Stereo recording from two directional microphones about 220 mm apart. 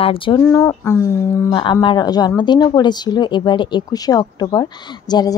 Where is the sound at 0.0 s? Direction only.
25° left (ahead or behind).